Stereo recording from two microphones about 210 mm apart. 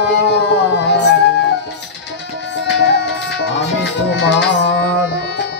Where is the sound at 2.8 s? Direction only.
55° left (ahead or behind).